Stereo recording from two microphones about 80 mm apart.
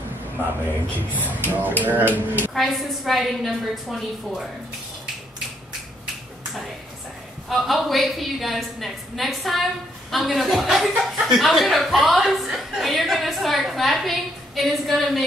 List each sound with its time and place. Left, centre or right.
1.5 s speech: right
2.5 s speech: centre
7.4 s speech: centre